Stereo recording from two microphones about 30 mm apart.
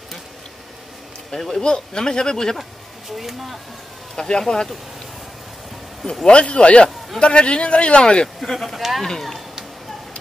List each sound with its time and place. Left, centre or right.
1.3 s speech: centre
1.6 s a man's voice: left
3.1 s speech: centre
4.1 s a man's voice: left
6.2 s speech: left
8.4 s speech: centre